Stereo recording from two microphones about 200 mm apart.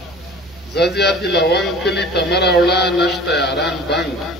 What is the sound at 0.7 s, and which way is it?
A man's voice, 55° left (ahead or behind).